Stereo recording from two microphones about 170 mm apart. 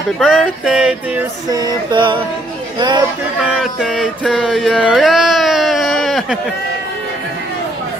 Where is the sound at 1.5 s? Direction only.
25° right (ahead or behind).